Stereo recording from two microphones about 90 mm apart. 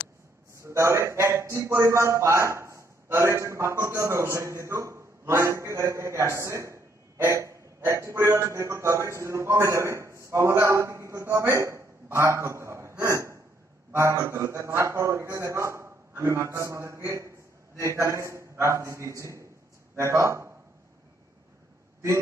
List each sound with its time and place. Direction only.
0.6 s a man's voice: 35° right (ahead or behind)
11.5 s a sound: 30° right (ahead or behind)
13.0 s hiccup: 30° right (ahead or behind)
13.9 s a man's voice: 35° right (ahead or behind)